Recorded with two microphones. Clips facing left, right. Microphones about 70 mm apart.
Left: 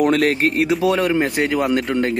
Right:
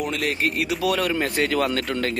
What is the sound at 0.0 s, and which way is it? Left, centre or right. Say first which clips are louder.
Speech: left 8 dB; left.